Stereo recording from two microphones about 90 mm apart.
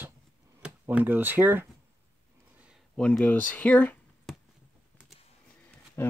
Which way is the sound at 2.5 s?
15° right (ahead or behind).